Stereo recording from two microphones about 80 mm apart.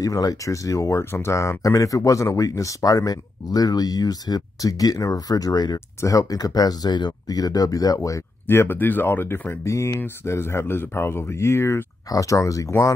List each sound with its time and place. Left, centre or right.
0.0 s speech: left
5.9 s speech: left
8.5 s speech: left